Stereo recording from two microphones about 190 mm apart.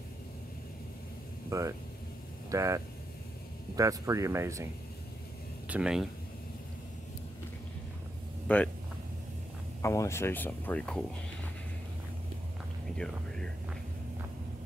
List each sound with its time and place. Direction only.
1.5 s speech: 15° right (ahead or behind)
5.7 s speech: 5° right (ahead or behind)
8.5 s speech: 5° left (ahead or behind)
9.8 s speech: 15° left (ahead or behind)
12.9 s speech: 5° left (ahead or behind)